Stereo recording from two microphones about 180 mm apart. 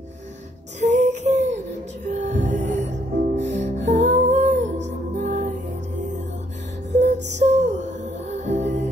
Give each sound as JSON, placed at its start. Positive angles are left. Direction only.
{"t": 0.7, "sound": "a sound", "side_deg": -40}
{"t": 2.0, "sound": "music", "side_deg": -40}
{"t": 4.1, "sound": "humming", "side_deg": -40}
{"t": 4.8, "sound": "music", "side_deg": -45}
{"t": 7.0, "sound": "music", "side_deg": -40}